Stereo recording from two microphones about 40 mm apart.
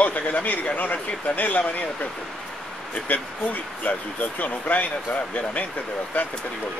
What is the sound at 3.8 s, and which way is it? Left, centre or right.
Speech, left.